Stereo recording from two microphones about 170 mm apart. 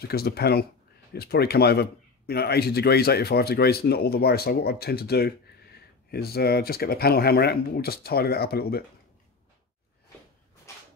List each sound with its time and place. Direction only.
0.0 s speech: 65° left (ahead or behind)